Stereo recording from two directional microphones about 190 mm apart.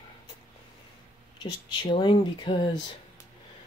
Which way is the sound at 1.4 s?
25° left (ahead or behind).